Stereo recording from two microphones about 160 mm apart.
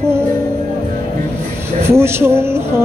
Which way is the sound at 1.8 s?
15° right (ahead or behind).